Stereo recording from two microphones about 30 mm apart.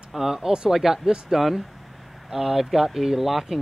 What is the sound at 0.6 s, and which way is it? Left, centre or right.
Speech, centre.